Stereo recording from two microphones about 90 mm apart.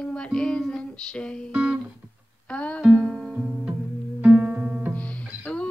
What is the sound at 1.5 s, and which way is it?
Music, 15° right (ahead or behind).